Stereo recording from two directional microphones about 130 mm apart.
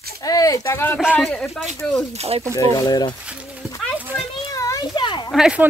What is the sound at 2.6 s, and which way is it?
Speech, 30° left (ahead or behind).